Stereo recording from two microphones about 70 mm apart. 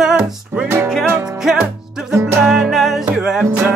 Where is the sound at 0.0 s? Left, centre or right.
Centre.